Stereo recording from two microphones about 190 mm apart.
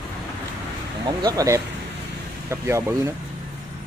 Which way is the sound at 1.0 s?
20° right (ahead or behind).